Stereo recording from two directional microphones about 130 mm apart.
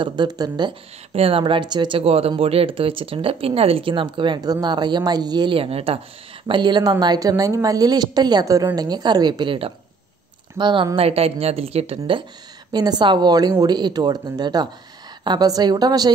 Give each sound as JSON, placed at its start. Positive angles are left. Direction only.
{"t": 0.0, "sound": "a woman's voice", "side_deg": -35}
{"t": 1.1, "sound": "speech", "side_deg": -45}
{"t": 6.4, "sound": "a woman's voice", "side_deg": -35}
{"t": 11.0, "sound": "speech", "side_deg": -50}
{"t": 12.7, "sound": "a woman's voice", "side_deg": -30}